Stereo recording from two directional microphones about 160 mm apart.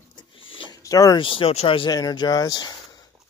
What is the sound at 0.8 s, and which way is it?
Speech, 20° left (ahead or behind).